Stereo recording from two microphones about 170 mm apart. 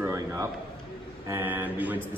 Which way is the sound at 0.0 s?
15° right (ahead or behind).